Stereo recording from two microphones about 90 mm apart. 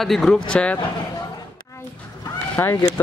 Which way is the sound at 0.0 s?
Centre (ahead or behind).